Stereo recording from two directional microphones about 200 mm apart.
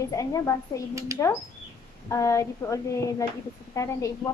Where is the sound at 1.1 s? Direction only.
15° right (ahead or behind).